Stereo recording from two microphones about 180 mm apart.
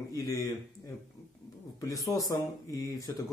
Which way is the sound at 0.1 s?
20° left (ahead or behind).